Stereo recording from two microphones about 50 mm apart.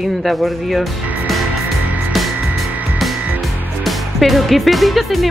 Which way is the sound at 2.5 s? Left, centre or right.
Right.